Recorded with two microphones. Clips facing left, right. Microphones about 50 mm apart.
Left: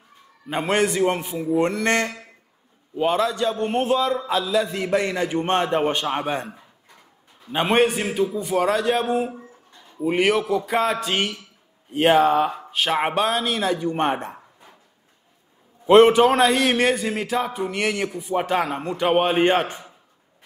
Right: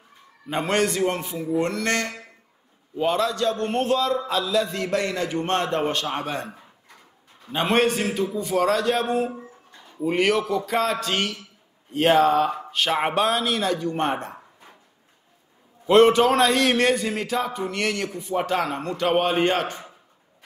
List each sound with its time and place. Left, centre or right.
0.5 s a man's voice: centre; by 2.2 s left
3.0 s a man's voice: centre
7.5 s a man's voice: centre
15.8 s a man's voice: centre